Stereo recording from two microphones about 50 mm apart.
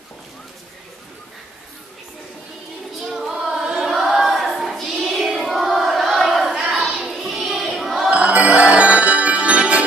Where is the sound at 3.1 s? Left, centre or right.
Centre.